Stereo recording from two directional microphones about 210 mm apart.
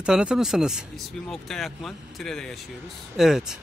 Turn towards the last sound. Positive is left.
turn(degrees=0)  # may be behind; listen again after turning